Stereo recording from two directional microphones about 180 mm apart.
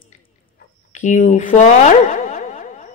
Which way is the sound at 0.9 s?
40° left (ahead or behind).